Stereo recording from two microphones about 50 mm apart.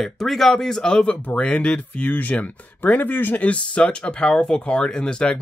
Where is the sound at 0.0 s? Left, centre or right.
Centre; by 3.4 s left.